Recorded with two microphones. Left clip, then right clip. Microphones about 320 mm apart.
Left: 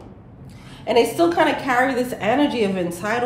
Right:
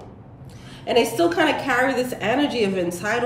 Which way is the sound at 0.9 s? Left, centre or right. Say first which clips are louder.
Left 2 dB; centre.